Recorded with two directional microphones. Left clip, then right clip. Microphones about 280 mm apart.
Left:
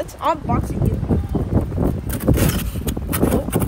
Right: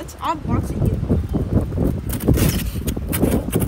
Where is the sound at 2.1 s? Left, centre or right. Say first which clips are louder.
Left 1 dB; centre.